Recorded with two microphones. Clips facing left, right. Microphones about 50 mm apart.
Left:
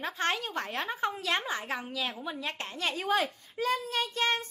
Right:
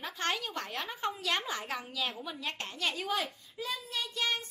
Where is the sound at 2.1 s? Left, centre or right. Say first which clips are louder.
Left 3 dB; left.